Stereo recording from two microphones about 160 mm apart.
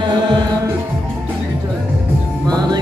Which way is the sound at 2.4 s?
25° right (ahead or behind).